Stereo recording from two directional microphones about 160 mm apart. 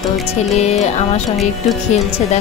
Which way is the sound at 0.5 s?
45° left (ahead or behind).